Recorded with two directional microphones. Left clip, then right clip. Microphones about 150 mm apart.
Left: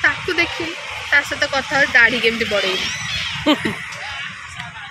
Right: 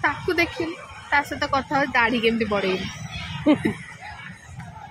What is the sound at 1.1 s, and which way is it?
Speech, 90° right.